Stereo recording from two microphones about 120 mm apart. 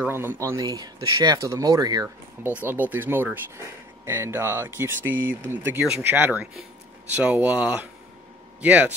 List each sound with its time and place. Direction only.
0.0 s speech: 20° right (ahead or behind)
2.4 s speech: 15° right (ahead or behind)